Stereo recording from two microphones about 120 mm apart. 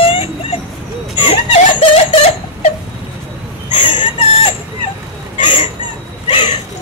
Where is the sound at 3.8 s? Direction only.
45° left (ahead or behind).